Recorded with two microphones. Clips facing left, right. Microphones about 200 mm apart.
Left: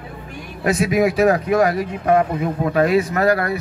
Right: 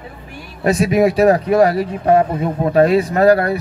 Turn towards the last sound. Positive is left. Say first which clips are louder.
# right 5 dB
turn(degrees=-30)  # may be behind; listen again after turning